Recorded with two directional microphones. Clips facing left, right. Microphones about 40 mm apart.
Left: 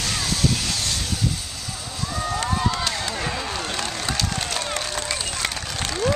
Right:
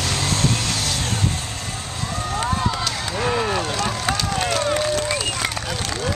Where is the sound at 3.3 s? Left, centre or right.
Centre.